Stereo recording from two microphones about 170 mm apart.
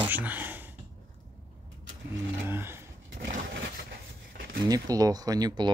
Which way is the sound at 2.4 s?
15° right (ahead or behind).